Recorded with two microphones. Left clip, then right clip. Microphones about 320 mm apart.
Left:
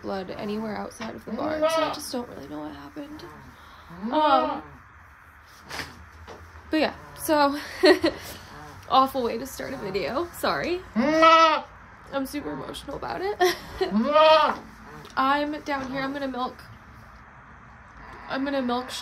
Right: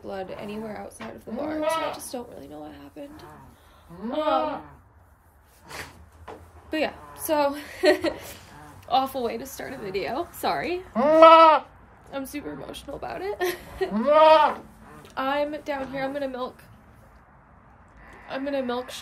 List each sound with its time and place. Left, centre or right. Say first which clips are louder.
0.0 s speech: left 2 dB; centre
6.7 s a woman's voice: left 2 dB; centre
11.1 s goat: right 4 dB; centre
12.3 s a woman's voice: left 2 dB; centre
13.9 s speech: right 2 dB; right
15.1 s a woman's voice: left 3 dB; centre
18.3 s speech: left 1 dB; centre